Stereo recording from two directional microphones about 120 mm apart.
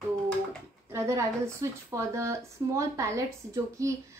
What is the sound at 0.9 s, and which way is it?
A woman's voice, 20° right (ahead or behind).